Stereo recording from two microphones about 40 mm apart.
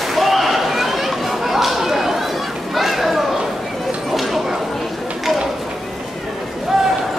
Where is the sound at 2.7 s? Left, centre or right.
Centre.